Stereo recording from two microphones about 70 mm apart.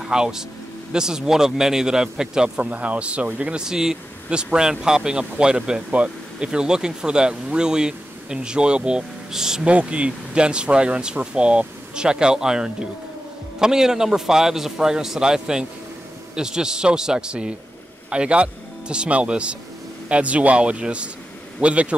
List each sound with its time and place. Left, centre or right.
0.0 s a man's voice: centre